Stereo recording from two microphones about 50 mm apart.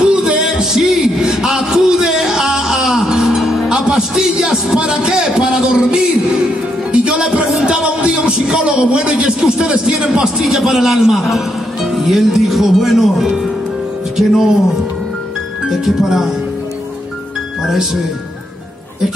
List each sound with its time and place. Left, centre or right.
0.0 s music: centre
5.5 s speech: centre
6.9 s music: centre
7.6 s a man's voice: centre
15.7 s speech: centre